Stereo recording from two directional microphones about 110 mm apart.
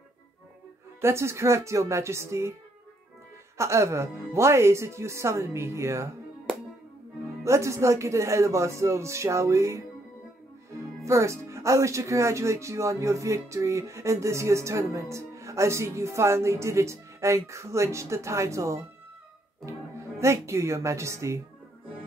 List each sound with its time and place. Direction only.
1.0 s speech: 25° right (ahead or behind)
3.5 s speech: 25° right (ahead or behind)
7.4 s speech: 25° right (ahead or behind)
11.1 s speech: 25° right (ahead or behind)
20.2 s speech: 25° right (ahead or behind)